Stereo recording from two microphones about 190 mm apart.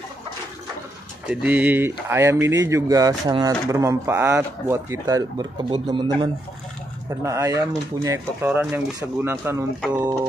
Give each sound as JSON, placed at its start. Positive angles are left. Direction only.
{"t": 1.2, "sound": "speech", "side_deg": -5}
{"t": 7.1, "sound": "speech", "side_deg": -15}